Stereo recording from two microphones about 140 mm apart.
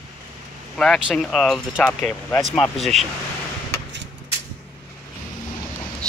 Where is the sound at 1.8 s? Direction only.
10° left (ahead or behind).